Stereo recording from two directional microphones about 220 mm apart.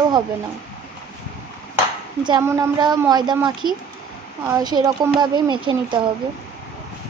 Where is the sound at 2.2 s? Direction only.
15° right (ahead or behind).